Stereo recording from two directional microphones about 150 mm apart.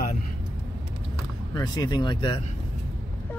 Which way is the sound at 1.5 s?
25° left (ahead or behind).